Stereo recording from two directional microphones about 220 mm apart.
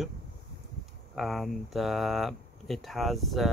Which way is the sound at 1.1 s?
Centre (ahead or behind).